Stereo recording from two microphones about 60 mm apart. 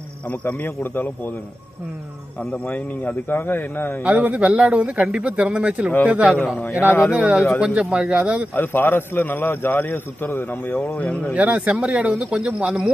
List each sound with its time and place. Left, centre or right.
0.3 s a man's voice: left
2.5 s a man's voice: left
4.0 s speech: right
6.8 s a man's voice: left
7.6 s speech: centre
8.5 s a man's voice: left
10.9 s speech: left
11.3 s speech: centre